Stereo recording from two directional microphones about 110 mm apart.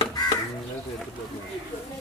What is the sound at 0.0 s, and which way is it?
Crow, 40° left (ahead or behind).